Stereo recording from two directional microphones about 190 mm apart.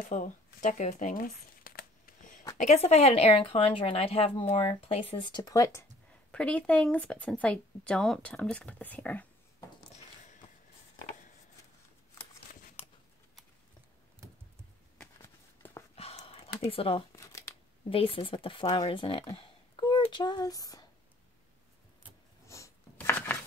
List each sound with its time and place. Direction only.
0.1 s crumpling: 40° left (ahead or behind)
2.5 s speech: 40° left (ahead or behind); by 9.3 s 10° left (ahead or behind)
15.0 s walk: 10° left (ahead or behind)
16.0 s a sound: 30° left (ahead or behind)
17.1 s crumpling: 15° left (ahead or behind)
17.8 s speech: 30° left (ahead or behind)
22.5 s chopping: 15° left (ahead or behind)